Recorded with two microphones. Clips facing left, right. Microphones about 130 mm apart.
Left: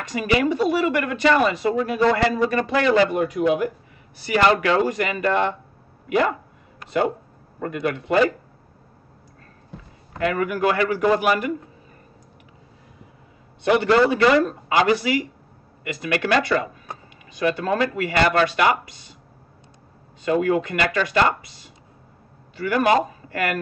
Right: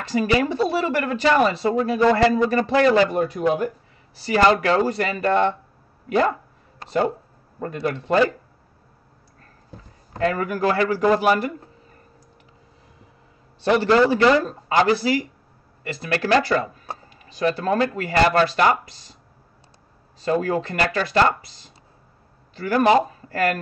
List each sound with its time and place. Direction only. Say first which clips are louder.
0.0 s speech: right 1 dB; 30° right (ahead or behind)
6.8 s a sound: even; 35° right (ahead or behind)
7.6 s speech: left 1 dB; 35° right (ahead or behind)
10.1 s speech: even; 35° right (ahead or behind)
14.1 s speech: even; 30° right (ahead or behind)
20.2 s speech: left 2 dB; 35° right (ahead or behind)